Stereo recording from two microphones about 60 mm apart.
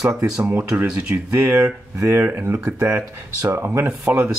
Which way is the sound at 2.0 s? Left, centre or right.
Right.